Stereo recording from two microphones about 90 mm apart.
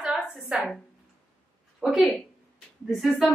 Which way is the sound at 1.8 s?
Centre (ahead or behind).